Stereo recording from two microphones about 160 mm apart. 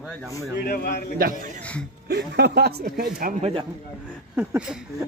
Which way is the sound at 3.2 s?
50° right (ahead or behind).